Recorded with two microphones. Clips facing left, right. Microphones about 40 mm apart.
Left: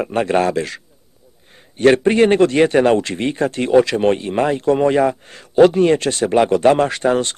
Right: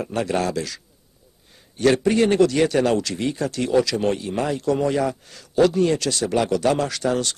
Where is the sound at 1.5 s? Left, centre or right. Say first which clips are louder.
Left 6 dB; left.